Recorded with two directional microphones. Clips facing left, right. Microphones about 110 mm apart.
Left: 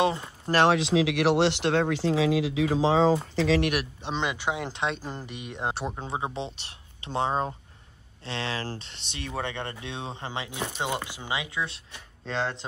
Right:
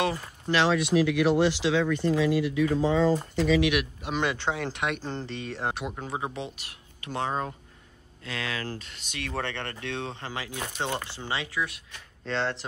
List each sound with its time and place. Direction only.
0.0 s speech: 20° left (ahead or behind)
0.7 s speech: 90° left
4.0 s speech: 20° left (ahead or behind)
5.0 s speech: 10° left (ahead or behind)
5.8 s speech: 30° left (ahead or behind)
9.3 s speech: 15° left (ahead or behind)
12.3 s speech: 15° left (ahead or behind)